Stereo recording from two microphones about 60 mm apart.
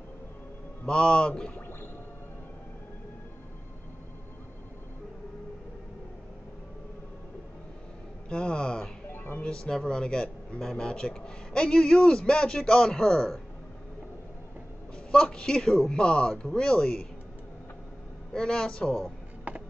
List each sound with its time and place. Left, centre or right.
0.8 s a man's voice: centre
8.3 s a man's voice: centre
9.1 s music: left
9.4 s a man's voice: centre
15.0 s a man's voice: centre
18.3 s a man's voice: centre